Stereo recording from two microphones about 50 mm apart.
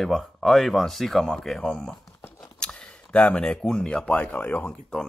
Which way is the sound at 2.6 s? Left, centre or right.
Left.